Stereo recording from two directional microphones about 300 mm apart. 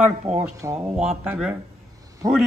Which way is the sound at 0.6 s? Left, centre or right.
Centre.